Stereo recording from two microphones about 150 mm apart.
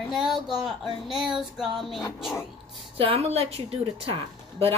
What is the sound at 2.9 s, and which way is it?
A woman's voice, 35° right (ahead or behind).